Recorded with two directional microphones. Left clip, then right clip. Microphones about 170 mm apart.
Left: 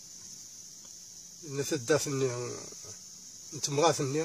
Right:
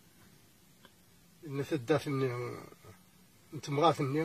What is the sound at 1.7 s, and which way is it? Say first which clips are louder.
Speech: left 3 dB; 20° left (ahead or behind).